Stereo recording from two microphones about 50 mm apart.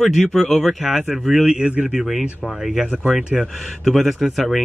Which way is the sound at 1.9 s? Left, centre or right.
Centre.